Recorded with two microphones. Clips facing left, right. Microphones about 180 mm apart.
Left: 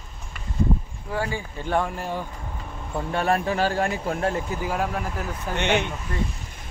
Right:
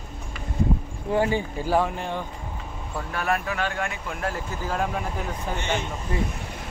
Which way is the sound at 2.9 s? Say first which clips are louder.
Left 4 dB; 25° left (ahead or behind).